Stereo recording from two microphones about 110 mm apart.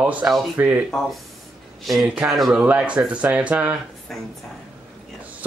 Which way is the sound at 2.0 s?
10° right (ahead or behind).